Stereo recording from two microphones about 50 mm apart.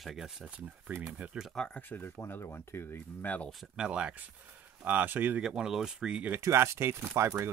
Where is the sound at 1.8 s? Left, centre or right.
Left.